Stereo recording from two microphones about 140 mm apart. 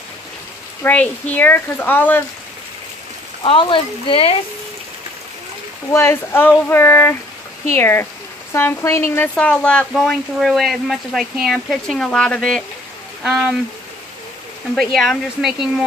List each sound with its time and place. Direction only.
0.8 s speech: 10° left (ahead or behind)
3.4 s speech: 40° left (ahead or behind)
5.9 s speech: 15° left (ahead or behind); by 13.6 s 5° right (ahead or behind)
14.8 s speech: centre (ahead or behind)